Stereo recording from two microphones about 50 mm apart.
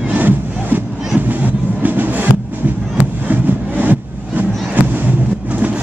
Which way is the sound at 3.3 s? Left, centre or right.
Right.